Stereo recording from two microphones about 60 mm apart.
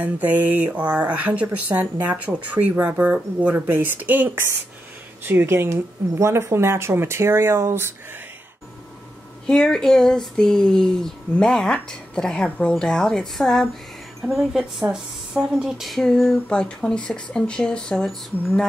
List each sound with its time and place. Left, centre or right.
0.0 s speech: right
5.2 s speech: right
9.5 s speech: centre
14.2 s speech: centre
15.8 s a sound: centre
16.4 s speech: centre